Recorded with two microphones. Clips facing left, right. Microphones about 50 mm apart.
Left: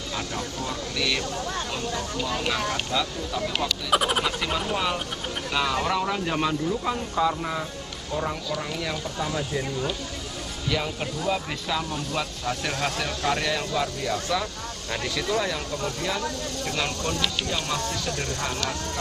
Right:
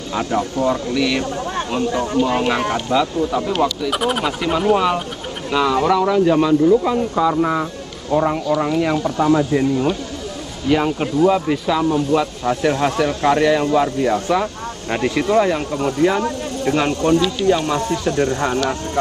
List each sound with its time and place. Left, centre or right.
0.1 s speech: right
3.9 s speech: centre
4.3 s speech: centre
5.9 s speech: centre
6.9 s speech: centre
8.1 s speech: right
11.4 s speech: centre
12.2 s speech: right